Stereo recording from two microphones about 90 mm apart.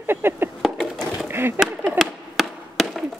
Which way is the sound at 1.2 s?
25° right (ahead or behind).